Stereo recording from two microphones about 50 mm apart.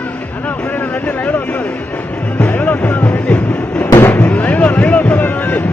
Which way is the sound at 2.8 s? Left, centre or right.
Left.